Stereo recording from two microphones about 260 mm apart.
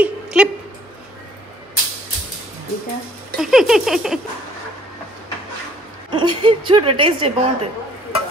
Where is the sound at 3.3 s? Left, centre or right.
Centre.